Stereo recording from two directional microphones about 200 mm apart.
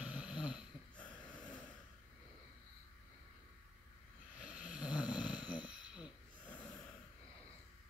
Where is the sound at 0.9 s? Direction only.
5° left (ahead or behind).